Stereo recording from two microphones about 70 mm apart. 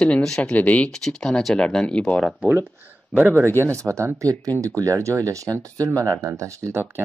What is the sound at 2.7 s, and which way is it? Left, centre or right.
Speech, right.